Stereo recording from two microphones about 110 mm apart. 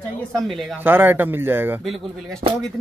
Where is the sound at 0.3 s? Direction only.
5° left (ahead or behind).